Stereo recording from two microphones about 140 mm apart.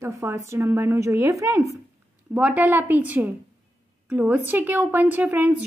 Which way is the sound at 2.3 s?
10° right (ahead or behind).